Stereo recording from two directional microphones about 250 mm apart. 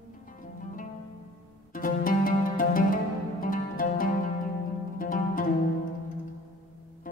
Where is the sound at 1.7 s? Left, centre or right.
Left.